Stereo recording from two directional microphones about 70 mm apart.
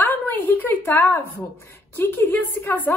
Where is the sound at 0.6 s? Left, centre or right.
Left.